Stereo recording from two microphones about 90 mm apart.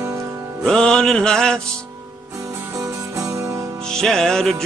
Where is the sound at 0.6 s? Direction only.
10° left (ahead or behind).